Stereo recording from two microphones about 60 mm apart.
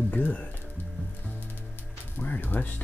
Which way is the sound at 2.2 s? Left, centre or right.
Left.